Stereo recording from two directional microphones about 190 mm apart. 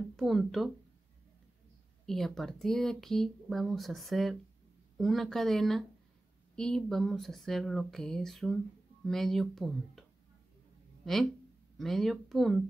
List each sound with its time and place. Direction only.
0.1 s speech: centre (ahead or behind)
2.0 s speech: centre (ahead or behind)
11.8 s speech: centre (ahead or behind)